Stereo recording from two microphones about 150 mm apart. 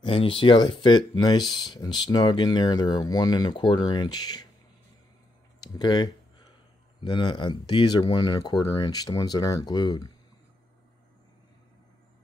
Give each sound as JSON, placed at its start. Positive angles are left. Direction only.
{"t": 0.0, "sound": "speech", "side_deg": 35}
{"t": 5.6, "sound": "speech", "side_deg": 30}